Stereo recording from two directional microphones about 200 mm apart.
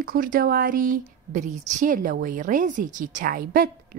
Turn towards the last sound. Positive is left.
turn(degrees=-45)  # may be behind; listen again after turning